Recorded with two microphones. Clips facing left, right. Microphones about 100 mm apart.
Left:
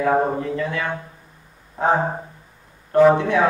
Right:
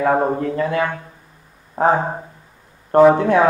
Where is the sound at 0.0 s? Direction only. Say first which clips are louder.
Right 2 dB; 45° right (ahead or behind).